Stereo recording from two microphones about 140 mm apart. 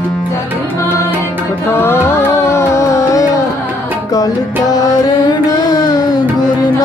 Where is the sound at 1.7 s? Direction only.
15° left (ahead or behind).